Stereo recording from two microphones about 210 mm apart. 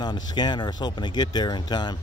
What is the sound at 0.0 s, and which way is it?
Speech, 20° left (ahead or behind).